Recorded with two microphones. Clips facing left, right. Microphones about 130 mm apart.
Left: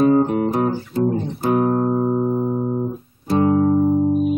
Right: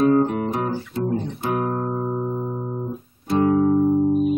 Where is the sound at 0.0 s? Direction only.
10° left (ahead or behind).